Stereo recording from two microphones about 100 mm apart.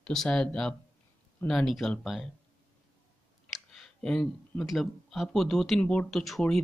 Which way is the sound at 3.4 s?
5° left (ahead or behind).